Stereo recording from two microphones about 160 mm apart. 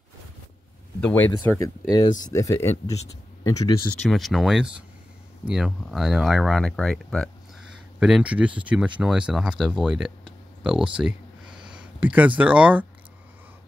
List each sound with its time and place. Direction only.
1.0 s speech: 10° left (ahead or behind)
2.0 s speech: 25° left (ahead or behind)
3.9 s speech: 5° left (ahead or behind)